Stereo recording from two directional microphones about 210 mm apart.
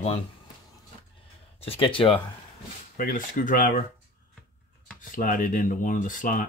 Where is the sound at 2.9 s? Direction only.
40° left (ahead or behind).